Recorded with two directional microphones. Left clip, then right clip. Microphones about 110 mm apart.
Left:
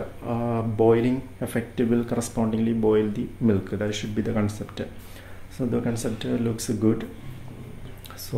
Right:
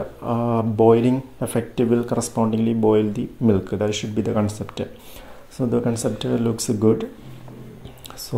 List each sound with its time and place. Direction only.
0.2 s speech: 35° right (ahead or behind)